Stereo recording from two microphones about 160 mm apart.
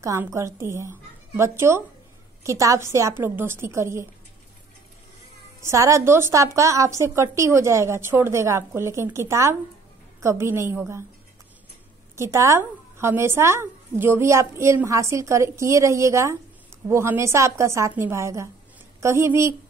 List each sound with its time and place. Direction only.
0.0 s a woman's voice: 20° right (ahead or behind)
5.6 s a woman's voice: 20° right (ahead or behind)
12.2 s a woman's voice: 20° right (ahead or behind)